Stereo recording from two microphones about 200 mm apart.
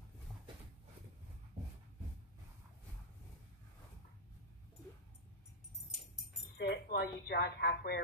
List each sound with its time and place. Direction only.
6.5 s speech: 55° left (ahead or behind)